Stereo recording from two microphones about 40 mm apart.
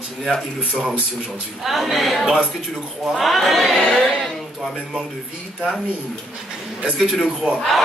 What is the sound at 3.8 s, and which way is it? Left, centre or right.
Music, left.